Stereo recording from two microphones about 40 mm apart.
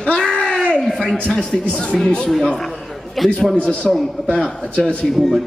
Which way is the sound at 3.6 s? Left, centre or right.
Left.